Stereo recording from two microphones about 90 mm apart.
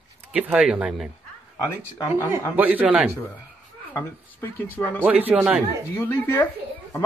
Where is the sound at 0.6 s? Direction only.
5° right (ahead or behind).